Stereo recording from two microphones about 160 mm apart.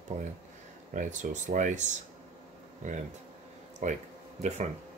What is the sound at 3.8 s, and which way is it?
Speech, 45° right (ahead or behind).